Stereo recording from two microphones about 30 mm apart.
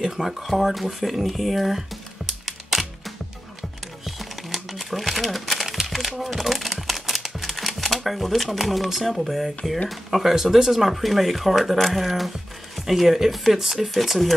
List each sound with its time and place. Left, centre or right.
0.0 s speech: centre
0.5 s speech: centre
2.2 s music: centre
4.0 s crumpling: centre
10.2 s speech: centre